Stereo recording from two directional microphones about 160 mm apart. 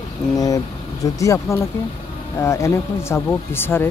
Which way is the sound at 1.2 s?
20° left (ahead or behind).